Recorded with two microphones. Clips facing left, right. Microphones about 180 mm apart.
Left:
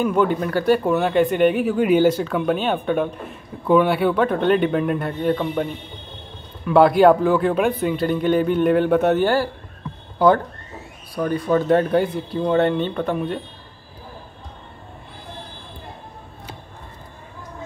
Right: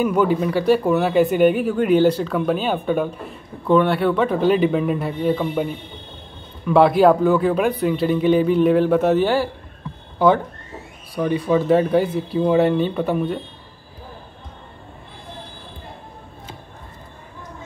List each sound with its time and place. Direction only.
0.0 s speech: 5° right (ahead or behind)